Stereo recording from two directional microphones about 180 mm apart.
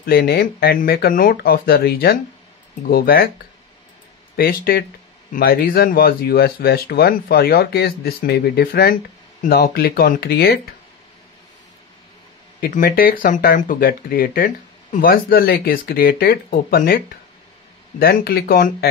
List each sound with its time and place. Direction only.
0.0 s speech: 60° left (ahead or behind)
4.4 s speech: 55° left (ahead or behind)
12.5 s speech: 50° left (ahead or behind)